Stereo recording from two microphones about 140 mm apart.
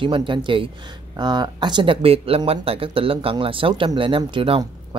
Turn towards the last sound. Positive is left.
turn(degrees=-40)  # may be behind; listen again after turning